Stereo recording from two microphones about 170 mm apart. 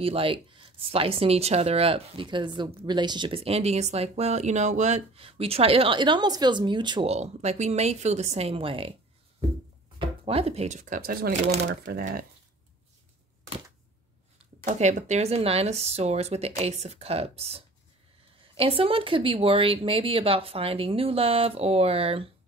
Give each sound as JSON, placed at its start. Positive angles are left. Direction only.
{"t": 0.0, "sound": "speech", "side_deg": -35}
{"t": 7.1, "sound": "speech", "side_deg": -40}
{"t": 9.9, "sound": "speech", "side_deg": -35}
{"t": 14.6, "sound": "speech", "side_deg": -45}